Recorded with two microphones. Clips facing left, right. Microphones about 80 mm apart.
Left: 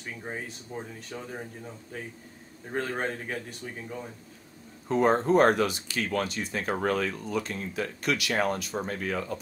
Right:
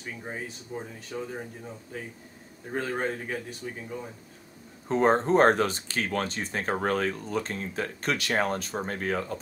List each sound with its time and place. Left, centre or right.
0.2 s a man's voice: centre
2.7 s a man's voice: centre
4.8 s speech: right